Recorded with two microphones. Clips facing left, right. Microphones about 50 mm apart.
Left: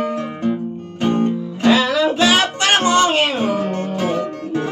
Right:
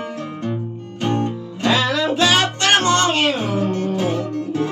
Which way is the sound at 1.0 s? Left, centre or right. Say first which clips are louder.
Left 4 dB; centre.